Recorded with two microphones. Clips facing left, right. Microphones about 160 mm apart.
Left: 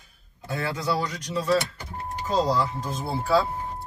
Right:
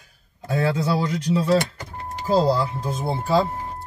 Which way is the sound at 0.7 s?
25° right (ahead or behind).